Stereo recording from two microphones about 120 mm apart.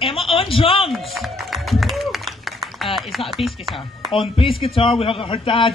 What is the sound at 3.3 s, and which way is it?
Speech, centre (ahead or behind).